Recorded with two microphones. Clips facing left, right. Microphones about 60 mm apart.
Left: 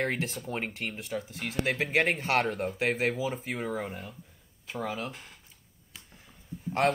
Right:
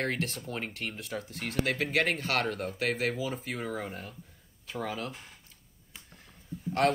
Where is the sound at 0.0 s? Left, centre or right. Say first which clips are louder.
Left 1 dB; centre.